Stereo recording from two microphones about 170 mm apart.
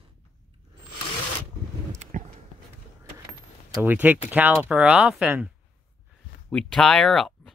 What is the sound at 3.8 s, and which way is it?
Speech, 10° right (ahead or behind).